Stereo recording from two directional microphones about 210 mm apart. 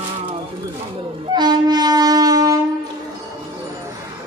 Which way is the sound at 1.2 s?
20° right (ahead or behind).